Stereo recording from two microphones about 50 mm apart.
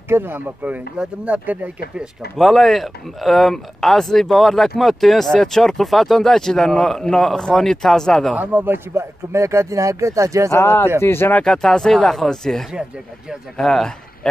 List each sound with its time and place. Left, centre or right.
0.1 s speech: right
0.9 s speech: right
2.3 s speech: centre
8.4 s speech: right
8.7 s speech: right
10.6 s speech: left
11.4 s speech: centre